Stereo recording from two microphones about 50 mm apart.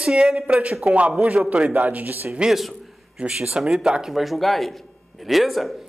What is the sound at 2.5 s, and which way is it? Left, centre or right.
Speech, centre.